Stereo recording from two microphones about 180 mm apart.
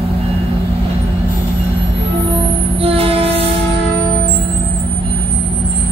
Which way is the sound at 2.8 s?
35° right (ahead or behind).